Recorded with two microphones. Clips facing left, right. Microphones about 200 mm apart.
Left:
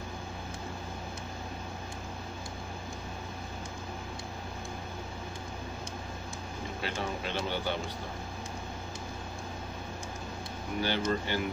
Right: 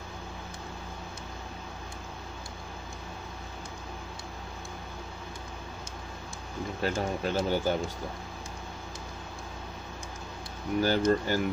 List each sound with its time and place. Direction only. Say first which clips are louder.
6.8 s speech: right 6 dB; 40° right (ahead or behind)
10.8 s speech: right 6 dB; 40° right (ahead or behind)